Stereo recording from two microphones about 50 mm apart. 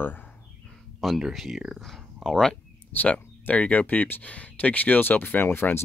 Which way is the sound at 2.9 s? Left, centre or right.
Left.